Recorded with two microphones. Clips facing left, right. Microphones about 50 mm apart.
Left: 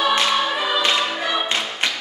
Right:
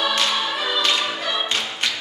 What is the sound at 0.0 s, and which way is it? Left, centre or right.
Choir, centre.